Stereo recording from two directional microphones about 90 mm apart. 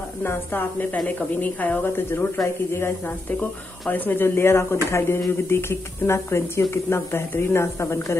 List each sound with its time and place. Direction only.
0.2 s speech: 25° left (ahead or behind)
3.9 s speech: 20° left (ahead or behind)